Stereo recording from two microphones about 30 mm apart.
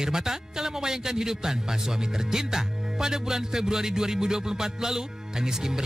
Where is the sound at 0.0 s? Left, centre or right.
Centre.